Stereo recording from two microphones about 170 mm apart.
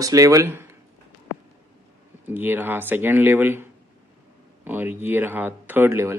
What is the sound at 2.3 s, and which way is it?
Speech, 10° right (ahead or behind).